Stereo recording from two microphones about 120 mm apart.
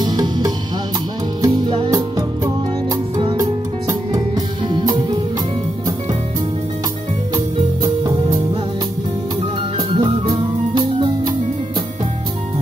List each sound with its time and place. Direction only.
0.0 s music: 35° right (ahead or behind)
4.6 s music: 35° right (ahead or behind)
7.8 s music: 30° right (ahead or behind)
9.4 s music: 55° right (ahead or behind)
9.9 s music: 40° right (ahead or behind)